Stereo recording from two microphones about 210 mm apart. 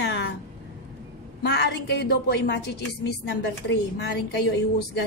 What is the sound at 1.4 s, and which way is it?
A woman's voice, 55° left (ahead or behind).